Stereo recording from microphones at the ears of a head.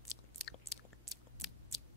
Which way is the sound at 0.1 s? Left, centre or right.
Left.